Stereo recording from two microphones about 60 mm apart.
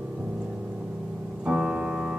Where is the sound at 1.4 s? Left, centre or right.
Centre.